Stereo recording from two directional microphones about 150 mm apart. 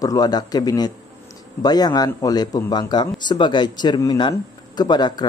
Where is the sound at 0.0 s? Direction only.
25° left (ahead or behind).